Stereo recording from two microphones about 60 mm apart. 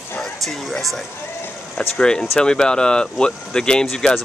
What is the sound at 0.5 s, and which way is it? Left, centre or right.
Speech, centre.